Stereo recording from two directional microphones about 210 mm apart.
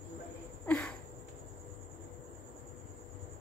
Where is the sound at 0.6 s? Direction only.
5° left (ahead or behind).